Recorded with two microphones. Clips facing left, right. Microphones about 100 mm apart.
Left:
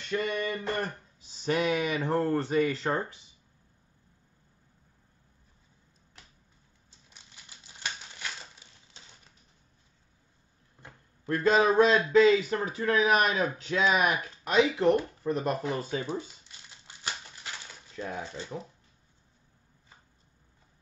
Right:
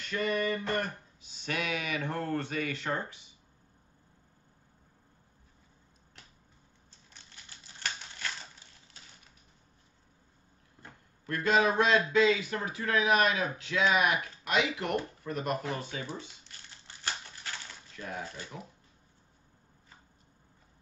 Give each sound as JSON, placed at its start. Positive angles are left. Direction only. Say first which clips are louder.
{"t": 0.1, "sound": "speech", "louder": "even", "side_deg": 25}
{"t": 1.3, "sound": "speech", "louder": "left 7 dB", "side_deg": 35}
{"t": 7.2, "sound": "typewriter", "louder": "even", "side_deg": 15}
{"t": 11.3, "sound": "speech", "louder": "left 4 dB", "side_deg": 35}
{"t": 16.4, "sound": "crumpling", "louder": "even", "side_deg": 15}
{"t": 17.9, "sound": "speech", "louder": "left 4 dB", "side_deg": 25}